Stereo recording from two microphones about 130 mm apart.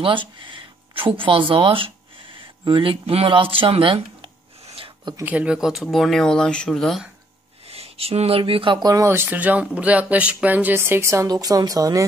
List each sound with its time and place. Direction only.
0.0 s speech: 40° right (ahead or behind)
2.3 s a sound: 40° right (ahead or behind)
5.2 s speech: 10° right (ahead or behind)
7.6 s speech: 50° right (ahead or behind)
8.8 s speech: 25° right (ahead or behind)